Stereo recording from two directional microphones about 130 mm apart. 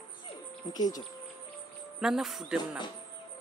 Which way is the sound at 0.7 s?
30° left (ahead or behind).